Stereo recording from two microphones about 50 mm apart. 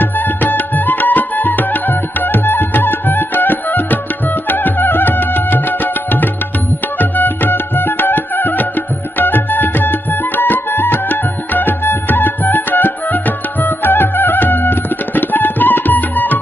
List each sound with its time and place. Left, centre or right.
0.0 s music: left
7.0 s music: left